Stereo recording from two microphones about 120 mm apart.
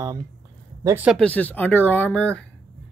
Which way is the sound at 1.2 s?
10° left (ahead or behind).